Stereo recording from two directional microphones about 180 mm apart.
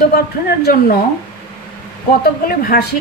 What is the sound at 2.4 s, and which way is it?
Speech, 55° left (ahead or behind).